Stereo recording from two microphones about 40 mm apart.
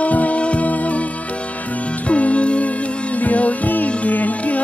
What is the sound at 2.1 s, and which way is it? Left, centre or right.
Music, left.